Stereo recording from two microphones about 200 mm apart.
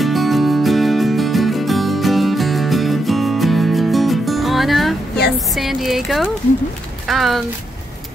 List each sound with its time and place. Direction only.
0.0 s music: centre (ahead or behind)
5.5 s speech: centre (ahead or behind)